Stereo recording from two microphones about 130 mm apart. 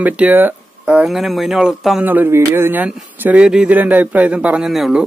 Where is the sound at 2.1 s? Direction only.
15° right (ahead or behind).